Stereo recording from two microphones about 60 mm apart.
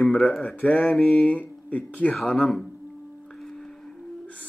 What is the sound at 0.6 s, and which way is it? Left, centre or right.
Mantra, left.